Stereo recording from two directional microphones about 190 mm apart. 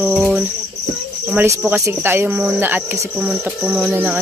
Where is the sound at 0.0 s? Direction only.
5° right (ahead or behind).